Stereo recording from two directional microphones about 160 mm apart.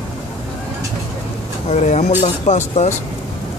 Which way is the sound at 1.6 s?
45° left (ahead or behind).